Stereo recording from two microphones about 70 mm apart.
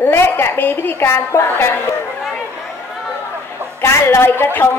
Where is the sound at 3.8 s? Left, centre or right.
Left.